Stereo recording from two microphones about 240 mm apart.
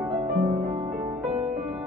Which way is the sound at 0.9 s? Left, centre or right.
Centre.